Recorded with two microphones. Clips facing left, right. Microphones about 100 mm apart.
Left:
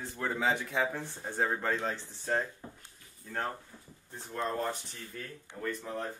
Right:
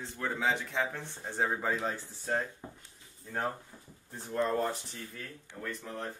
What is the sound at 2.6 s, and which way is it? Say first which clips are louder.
Speech: right 1 dB; 15° right (ahead or behind).